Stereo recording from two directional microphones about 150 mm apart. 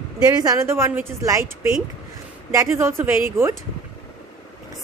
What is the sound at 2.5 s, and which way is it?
A woman's voice, 15° right (ahead or behind).